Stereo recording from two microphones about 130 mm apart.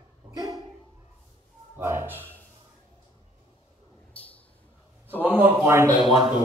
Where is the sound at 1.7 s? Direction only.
20° right (ahead or behind).